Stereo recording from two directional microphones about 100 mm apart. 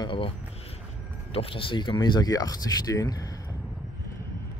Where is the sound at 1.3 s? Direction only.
70° left (ahead or behind); by 3.2 s 35° left (ahead or behind).